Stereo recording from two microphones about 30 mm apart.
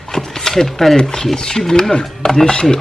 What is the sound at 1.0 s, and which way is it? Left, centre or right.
Speech, left.